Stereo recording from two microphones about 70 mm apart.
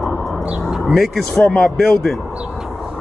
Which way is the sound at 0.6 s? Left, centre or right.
Centre.